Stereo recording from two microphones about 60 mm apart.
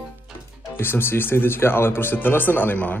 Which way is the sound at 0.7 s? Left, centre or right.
Left.